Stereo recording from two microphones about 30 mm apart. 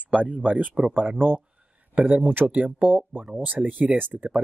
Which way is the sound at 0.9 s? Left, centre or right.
Right.